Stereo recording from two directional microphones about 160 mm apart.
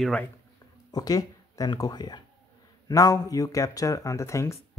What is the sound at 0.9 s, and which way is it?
Speech, 20° left (ahead or behind).